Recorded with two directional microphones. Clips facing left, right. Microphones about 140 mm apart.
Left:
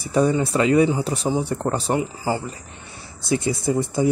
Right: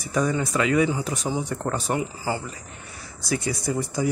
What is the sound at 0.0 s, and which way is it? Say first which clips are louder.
Speech: left 5 dB; 30° left (ahead or behind).